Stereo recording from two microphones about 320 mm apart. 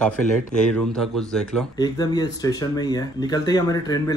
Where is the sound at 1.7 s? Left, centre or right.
Centre.